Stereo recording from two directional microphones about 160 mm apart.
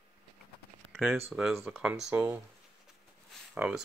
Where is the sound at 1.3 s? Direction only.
5° right (ahead or behind).